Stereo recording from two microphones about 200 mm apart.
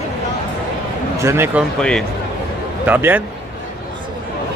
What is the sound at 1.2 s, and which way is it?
Speech, 10° right (ahead or behind).